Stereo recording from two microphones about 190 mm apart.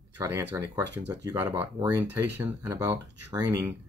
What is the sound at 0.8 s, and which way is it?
Speech, 65° right (ahead or behind).